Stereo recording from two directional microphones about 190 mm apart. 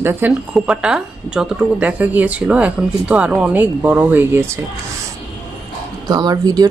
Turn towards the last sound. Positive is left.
turn(degrees=-20)  # may be behind; listen again after turning